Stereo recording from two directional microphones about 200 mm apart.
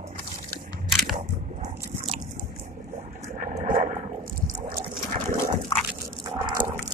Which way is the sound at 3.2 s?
45° right (ahead or behind).